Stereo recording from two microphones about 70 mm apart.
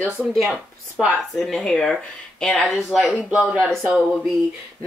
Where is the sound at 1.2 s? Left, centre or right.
Centre.